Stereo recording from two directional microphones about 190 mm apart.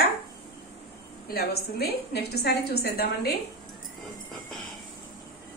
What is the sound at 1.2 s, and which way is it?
A woman's voice, 55° left (ahead or behind).